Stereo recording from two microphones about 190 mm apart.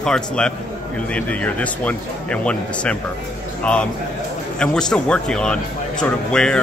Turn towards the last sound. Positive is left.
turn(degrees=5)  # may be behind; listen again after turning